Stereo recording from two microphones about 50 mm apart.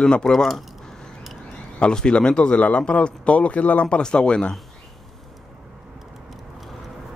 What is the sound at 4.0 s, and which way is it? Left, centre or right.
Speech, centre.